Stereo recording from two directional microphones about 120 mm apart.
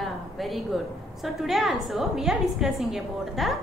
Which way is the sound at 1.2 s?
Centre (ahead or behind).